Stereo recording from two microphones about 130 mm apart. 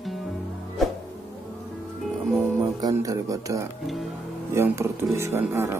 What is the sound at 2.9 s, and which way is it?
Speech, 25° right (ahead or behind).